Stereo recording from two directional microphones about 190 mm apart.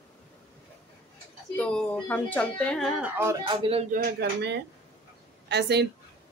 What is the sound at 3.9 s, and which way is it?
Speech, 60° right (ahead or behind).